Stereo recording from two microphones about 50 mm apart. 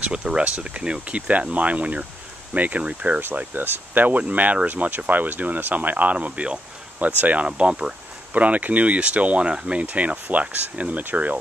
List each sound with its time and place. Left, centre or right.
0.0 s speech: centre
3.3 s speech: right
7.4 s speech: right
8.4 s speech: right
9.8 s speech: right